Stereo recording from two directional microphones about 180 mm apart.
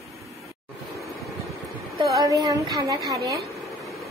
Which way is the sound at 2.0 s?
20° right (ahead or behind).